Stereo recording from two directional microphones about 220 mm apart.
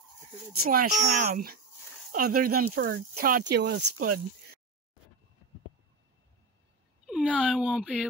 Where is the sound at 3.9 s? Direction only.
90° right.